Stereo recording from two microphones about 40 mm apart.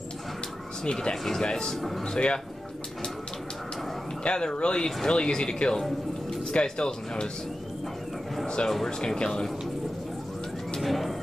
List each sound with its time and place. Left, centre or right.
0.8 s speech: left
1.8 s speech: centre
2.0 s speech: left
4.2 s speech: left
8.6 s speech: centre
10.8 s music: centre